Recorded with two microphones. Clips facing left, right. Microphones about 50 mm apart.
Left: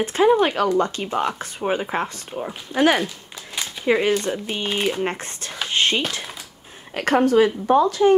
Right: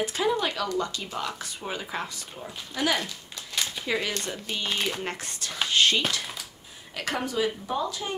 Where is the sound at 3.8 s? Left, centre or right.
Left.